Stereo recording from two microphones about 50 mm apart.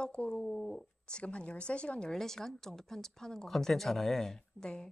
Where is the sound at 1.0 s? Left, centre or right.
Left.